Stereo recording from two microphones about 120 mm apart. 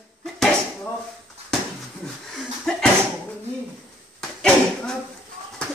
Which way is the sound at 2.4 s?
5° left (ahead or behind).